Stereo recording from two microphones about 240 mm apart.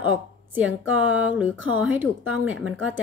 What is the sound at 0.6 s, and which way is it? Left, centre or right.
A woman's voice, centre.